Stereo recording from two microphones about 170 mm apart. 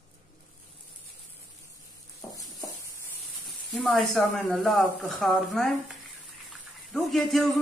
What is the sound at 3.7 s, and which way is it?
Speech, centre (ahead or behind).